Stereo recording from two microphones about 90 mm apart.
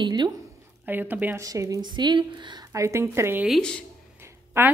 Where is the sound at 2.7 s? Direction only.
30° right (ahead or behind).